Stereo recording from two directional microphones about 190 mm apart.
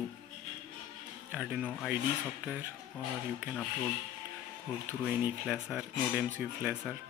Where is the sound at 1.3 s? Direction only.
5° right (ahead or behind).